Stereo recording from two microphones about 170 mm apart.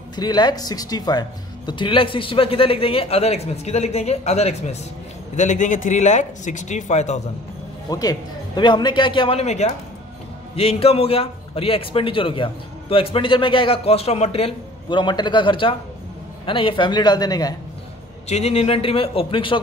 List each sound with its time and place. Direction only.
0.1 s a man's voice: 25° left (ahead or behind); by 7.2 s 40° left (ahead or behind)
7.9 s a man's voice: 20° left (ahead or behind)
18.3 s a man's voice: 40° left (ahead or behind)